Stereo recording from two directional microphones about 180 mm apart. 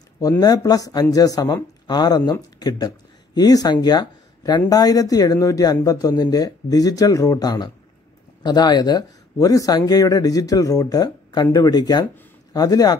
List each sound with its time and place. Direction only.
0.2 s speech: 20° left (ahead or behind)